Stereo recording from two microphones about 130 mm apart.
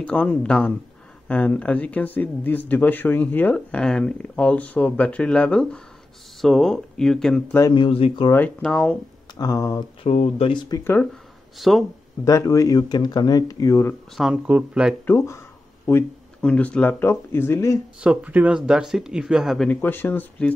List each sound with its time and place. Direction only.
0.0 s speech: 10° left (ahead or behind)
7.7 s speech: 45° left (ahead or behind)
8.3 s speech: 10° left (ahead or behind)
9.4 s speech: 25° left (ahead or behind)
10.0 s speech: 55° left (ahead or behind)
10.5 s speech: 35° left (ahead or behind)
10.8 s speech: 15° left (ahead or behind)
11.5 s speech: centre (ahead or behind)
12.3 s speech: 25° left (ahead or behind)
14.1 s speech: 5° right (ahead or behind)
15.0 s a sound: 20° left (ahead or behind)
16.4 s speech: 10° left (ahead or behind)
18.0 s speech: 10° right (ahead or behind)
19.7 s speech: 15° left (ahead or behind)